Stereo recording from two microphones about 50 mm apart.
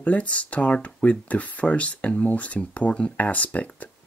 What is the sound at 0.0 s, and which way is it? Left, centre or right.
Speech, left.